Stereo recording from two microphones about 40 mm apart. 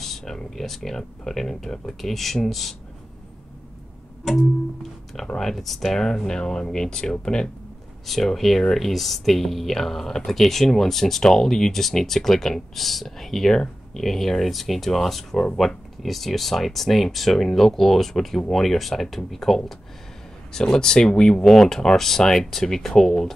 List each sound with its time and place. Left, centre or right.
0.0 s a sound: centre
0.6 s speech: centre
4.2 s music: centre
5.1 s speech: centre
8.1 s speech: centre
21.5 s speech: centre